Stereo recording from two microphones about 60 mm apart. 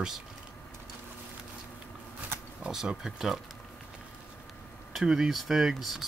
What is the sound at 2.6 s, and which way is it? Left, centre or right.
Speech, centre.